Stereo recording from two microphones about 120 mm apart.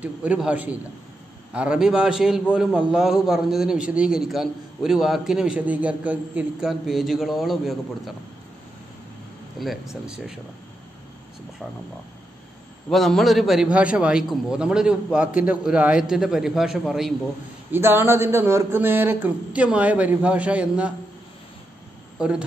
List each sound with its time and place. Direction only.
0.0 s a man's voice: 10° right (ahead or behind)
9.6 s a man's voice: centre (ahead or behind)
12.9 s a man's voice: centre (ahead or behind)
17.6 s a man's voice: 20° right (ahead or behind)
22.2 s a man's voice: 10° right (ahead or behind)